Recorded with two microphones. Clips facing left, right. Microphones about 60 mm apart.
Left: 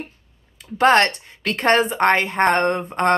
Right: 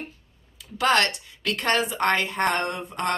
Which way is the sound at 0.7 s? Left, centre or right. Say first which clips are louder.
Left 6 dB; left.